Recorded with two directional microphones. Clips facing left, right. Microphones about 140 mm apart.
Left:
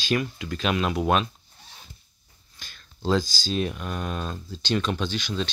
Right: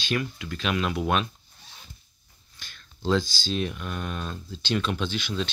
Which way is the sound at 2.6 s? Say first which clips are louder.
Left 3 dB; 40° left (ahead or behind).